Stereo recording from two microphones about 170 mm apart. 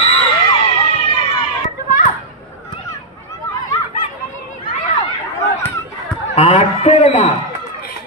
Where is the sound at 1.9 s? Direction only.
50° left (ahead or behind).